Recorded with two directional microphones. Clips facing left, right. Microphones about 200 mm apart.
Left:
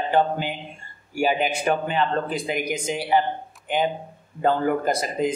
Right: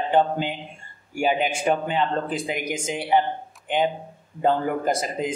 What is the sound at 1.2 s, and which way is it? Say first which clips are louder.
Speech: even; 20° right (ahead or behind).